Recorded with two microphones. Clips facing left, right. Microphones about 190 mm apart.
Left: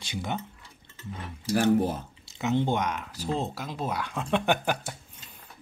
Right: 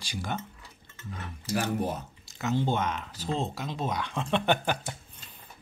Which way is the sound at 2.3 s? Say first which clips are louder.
Left 2 dB; 20° left (ahead or behind).